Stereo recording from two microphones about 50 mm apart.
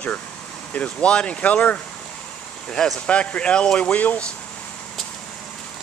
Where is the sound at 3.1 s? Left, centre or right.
Left.